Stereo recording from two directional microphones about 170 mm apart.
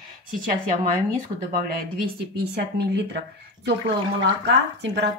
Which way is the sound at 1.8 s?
70° right (ahead or behind).